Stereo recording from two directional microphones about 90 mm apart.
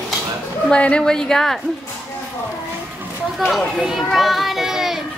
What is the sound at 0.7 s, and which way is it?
Speech, 10° left (ahead or behind).